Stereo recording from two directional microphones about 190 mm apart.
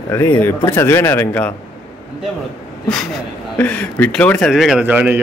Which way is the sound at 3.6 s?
10° left (ahead or behind).